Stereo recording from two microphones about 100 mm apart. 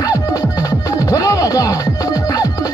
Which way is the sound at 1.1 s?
35° left (ahead or behind).